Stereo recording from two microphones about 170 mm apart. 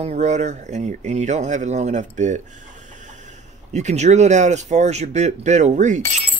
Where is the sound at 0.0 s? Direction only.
45° right (ahead or behind).